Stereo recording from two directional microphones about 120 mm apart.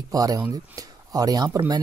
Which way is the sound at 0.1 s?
30° right (ahead or behind).